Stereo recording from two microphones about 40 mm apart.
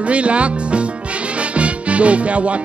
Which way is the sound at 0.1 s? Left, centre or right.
Right.